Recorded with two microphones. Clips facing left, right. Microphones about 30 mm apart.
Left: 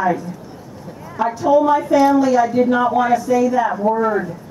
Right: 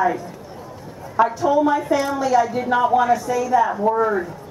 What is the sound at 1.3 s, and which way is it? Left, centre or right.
A woman's voice, centre.